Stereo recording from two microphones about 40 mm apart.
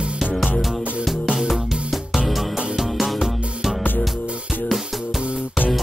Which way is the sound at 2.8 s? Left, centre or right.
Centre.